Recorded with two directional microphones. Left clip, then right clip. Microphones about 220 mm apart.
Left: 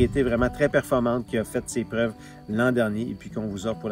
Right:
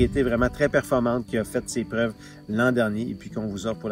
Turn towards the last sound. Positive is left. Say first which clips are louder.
# even
turn(degrees=0)  # may be behind; listen again after turning